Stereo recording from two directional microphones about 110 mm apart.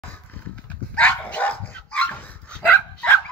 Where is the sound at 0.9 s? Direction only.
15° left (ahead or behind).